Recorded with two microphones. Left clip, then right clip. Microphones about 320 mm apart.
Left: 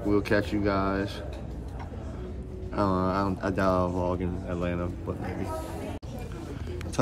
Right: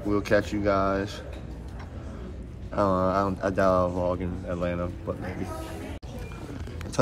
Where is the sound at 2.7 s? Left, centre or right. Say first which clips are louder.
Right 3 dB; centre.